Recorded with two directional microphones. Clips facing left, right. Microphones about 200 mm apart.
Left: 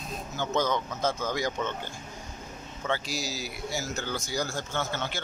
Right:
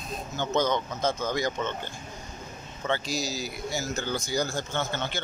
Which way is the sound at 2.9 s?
5° left (ahead or behind).